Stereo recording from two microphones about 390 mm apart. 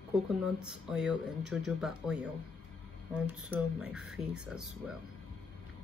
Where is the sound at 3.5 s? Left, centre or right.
Centre.